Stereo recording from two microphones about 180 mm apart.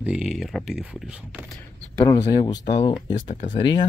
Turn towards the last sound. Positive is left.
turn(degrees=25)  # may be behind; listen again after turning